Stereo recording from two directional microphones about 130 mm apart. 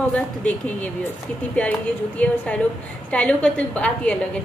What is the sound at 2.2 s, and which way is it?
A woman's voice, 10° left (ahead or behind).